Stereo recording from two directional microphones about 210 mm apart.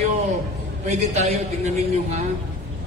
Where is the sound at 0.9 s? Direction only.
30° right (ahead or behind).